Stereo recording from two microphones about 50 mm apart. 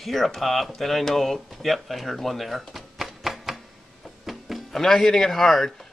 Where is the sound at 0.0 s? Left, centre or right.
Centre.